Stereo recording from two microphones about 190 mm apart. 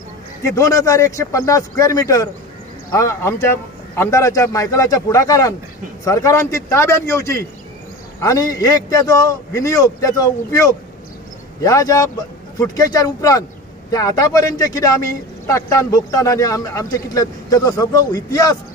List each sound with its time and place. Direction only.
0.4 s a man's voice: 15° left (ahead or behind)